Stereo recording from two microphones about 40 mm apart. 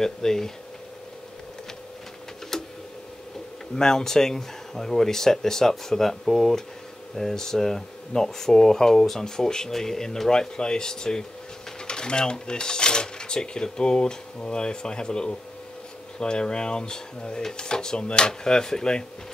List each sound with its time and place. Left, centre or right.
0.0 s speech: centre
2.5 s a sound: centre
3.7 s speech: centre